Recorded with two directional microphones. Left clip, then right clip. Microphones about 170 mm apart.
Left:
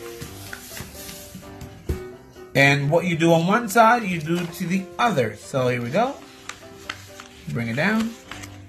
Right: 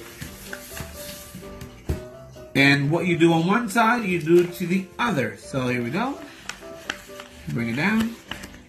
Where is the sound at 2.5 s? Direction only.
70° left (ahead or behind).